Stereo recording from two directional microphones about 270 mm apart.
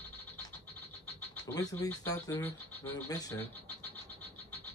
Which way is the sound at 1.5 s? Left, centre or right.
Centre.